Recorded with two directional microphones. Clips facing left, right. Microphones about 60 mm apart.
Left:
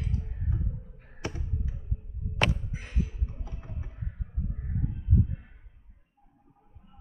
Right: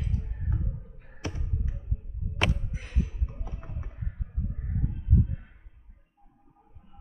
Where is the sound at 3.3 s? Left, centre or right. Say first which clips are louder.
Right 2 dB; right.